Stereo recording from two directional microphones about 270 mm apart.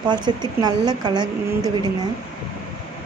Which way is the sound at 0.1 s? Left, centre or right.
Centre.